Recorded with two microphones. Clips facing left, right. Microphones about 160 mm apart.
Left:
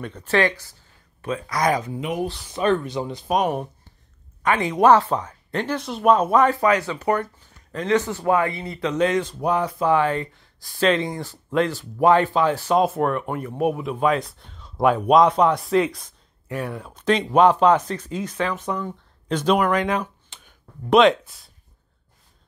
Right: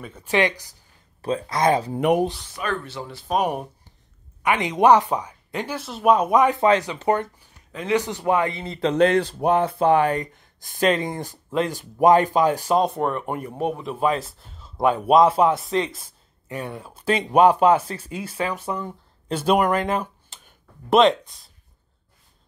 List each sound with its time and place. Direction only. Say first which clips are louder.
0.0 s speech: left 1 dB; 10° right (ahead or behind)
1.2 s speech: right 2 dB; 30° right (ahead or behind)
2.0 s speech: right 7 dB; 60° right (ahead or behind)
2.5 s speech: left 7 dB; 20° left (ahead or behind)
3.3 s speech: even; 10° right (ahead or behind)
7.3 s a man's voice: left 4 dB; 10° right (ahead or behind); by 8.9 s 30° right (ahead or behind)
9.4 s speech: right 3 dB; 60° right (ahead or behind)
9.8 s speech: right 1 dB; 20° right (ahead or behind)
10.1 s speech: even; 45° right (ahead or behind)
11.7 s speech: right 3 dB; 15° right (ahead or behind)
12.7 s a man's voice: left 1 dB; centre (ahead or behind)